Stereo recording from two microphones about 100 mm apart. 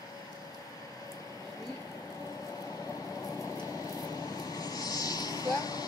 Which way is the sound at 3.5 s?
35° left (ahead or behind).